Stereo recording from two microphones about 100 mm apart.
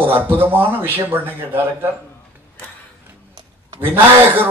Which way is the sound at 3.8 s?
20° right (ahead or behind).